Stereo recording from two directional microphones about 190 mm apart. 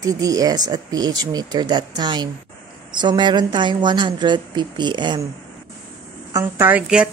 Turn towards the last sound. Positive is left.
turn(degrees=-5)  # may be behind; listen again after turning